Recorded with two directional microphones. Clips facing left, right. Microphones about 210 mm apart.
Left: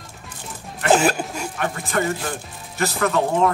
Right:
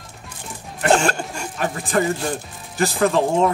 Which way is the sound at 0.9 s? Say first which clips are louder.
Left 4 dB; 5° left (ahead or behind).